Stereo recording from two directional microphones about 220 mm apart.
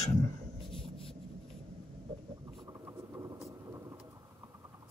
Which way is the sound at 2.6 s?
15° right (ahead or behind).